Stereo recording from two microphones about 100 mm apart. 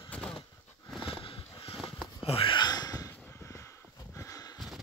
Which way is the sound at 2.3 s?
70° left (ahead or behind).